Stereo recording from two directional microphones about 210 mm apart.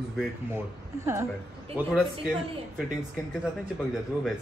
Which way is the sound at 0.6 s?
15° right (ahead or behind).